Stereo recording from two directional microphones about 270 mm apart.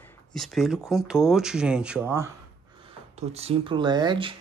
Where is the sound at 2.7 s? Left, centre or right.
Right.